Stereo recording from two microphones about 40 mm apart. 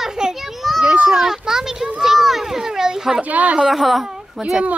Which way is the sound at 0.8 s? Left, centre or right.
Right.